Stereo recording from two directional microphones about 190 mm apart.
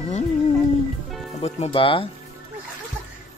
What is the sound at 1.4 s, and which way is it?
Speech, 30° left (ahead or behind).